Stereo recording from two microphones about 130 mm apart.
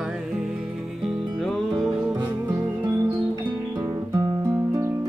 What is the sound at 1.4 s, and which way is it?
Music, centre (ahead or behind).